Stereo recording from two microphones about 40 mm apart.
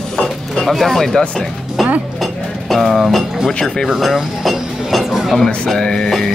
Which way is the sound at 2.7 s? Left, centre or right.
Centre.